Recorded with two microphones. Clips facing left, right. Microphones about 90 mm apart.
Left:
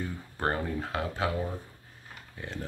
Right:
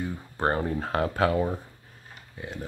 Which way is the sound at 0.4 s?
35° right (ahead or behind).